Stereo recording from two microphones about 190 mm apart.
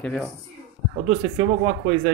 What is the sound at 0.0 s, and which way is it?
Speech, 10° left (ahead or behind).